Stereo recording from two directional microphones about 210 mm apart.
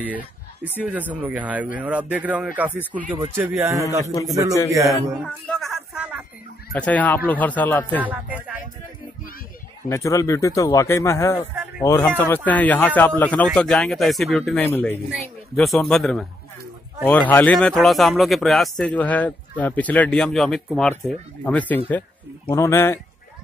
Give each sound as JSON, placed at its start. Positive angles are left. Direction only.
{"t": 0.7, "sound": "speech", "side_deg": -5}
{"t": 4.0, "sound": "speech", "side_deg": 15}
{"t": 4.7, "sound": "speech", "side_deg": -15}
{"t": 5.2, "sound": "a sound", "side_deg": 0}
{"t": 6.7, "sound": "speech", "side_deg": 5}
{"t": 8.0, "sound": "speech", "side_deg": -10}
{"t": 9.8, "sound": "speech", "side_deg": 15}